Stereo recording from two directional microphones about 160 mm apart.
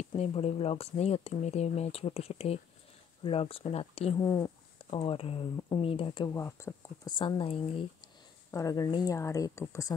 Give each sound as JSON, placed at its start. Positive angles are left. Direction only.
{"t": 0.2, "sound": "speech", "side_deg": 40}
{"t": 4.2, "sound": "a woman's voice", "side_deg": 20}
{"t": 4.9, "sound": "speech", "side_deg": 35}
{"t": 6.2, "sound": "a woman's voice", "side_deg": 20}
{"t": 7.2, "sound": "speech", "side_deg": 30}
{"t": 8.5, "sound": "a woman's voice", "side_deg": 20}